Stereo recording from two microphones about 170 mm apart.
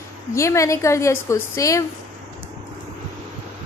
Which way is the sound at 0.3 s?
15° left (ahead or behind).